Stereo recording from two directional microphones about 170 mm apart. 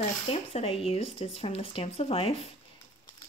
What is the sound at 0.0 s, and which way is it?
Speech, 35° left (ahead or behind).